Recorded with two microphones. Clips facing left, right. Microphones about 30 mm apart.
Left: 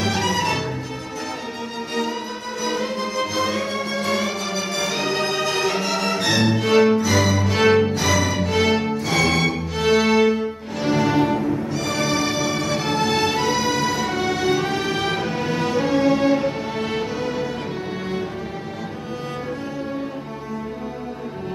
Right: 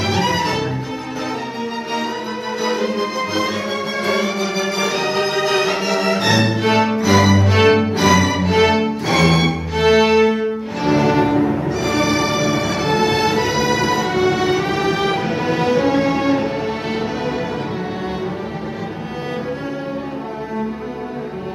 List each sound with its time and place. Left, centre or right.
0.0 s music: centre
2.8 s music: centre; by 11.6 s right
12.0 s music: centre